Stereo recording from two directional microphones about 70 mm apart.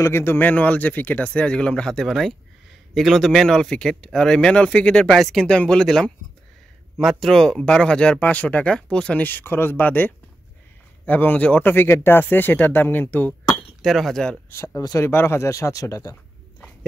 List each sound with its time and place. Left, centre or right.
0.0 s speech: left; by 5.0 s centre
5.0 s speech: centre
5.4 s speech: centre
9.2 s speech: left
13.8 s speech: centre
14.5 s speech: left